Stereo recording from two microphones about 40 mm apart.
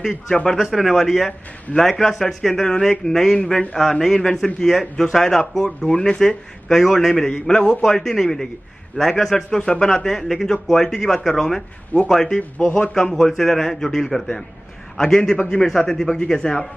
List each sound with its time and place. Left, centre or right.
0.3 s speech: left
0.6 s a man's voice: centre
5.9 s a man's voice: left
7.8 s a man's voice: centre
12.4 s a man's voice: left
12.9 s a man's voice: centre